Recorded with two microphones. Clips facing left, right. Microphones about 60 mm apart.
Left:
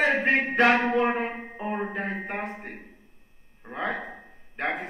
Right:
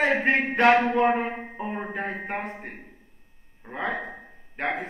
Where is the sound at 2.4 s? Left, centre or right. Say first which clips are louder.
Even; centre.